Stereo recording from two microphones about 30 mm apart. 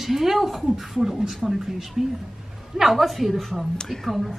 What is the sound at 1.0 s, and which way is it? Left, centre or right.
A woman's voice, centre.